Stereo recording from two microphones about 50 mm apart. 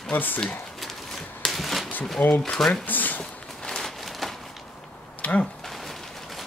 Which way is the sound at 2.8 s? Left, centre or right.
Left.